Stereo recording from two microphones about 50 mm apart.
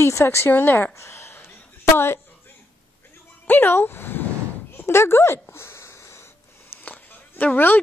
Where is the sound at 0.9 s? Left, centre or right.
Left.